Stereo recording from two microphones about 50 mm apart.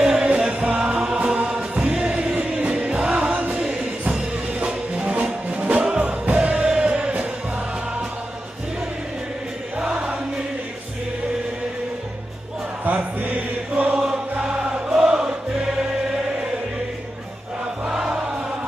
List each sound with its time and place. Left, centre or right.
0.0 s music: centre
0.8 s chant: right
2.0 s music: centre
3.0 s music: centre
3.3 s music: right
9.8 s music: right
12.8 s chant: right
13.9 s choir: centre
17.8 s chant: right